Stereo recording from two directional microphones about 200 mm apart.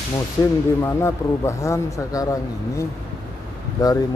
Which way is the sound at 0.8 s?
15° left (ahead or behind).